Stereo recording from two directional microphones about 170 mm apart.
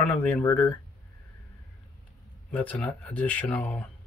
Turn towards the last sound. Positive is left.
turn(degrees=10)  # may be behind; listen again after turning